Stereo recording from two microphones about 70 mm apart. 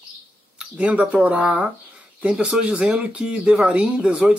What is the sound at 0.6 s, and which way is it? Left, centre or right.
Speech, centre.